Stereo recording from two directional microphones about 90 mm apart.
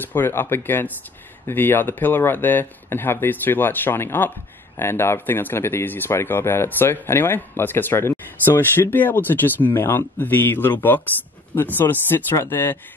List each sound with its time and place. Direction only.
0.0 s speech: 25° left (ahead or behind)